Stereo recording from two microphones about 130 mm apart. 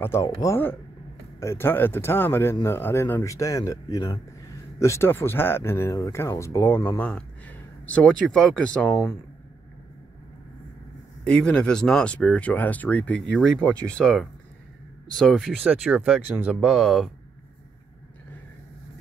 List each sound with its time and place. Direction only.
0.0 s speech: 20° left (ahead or behind)
11.2 s speech: 10° left (ahead or behind)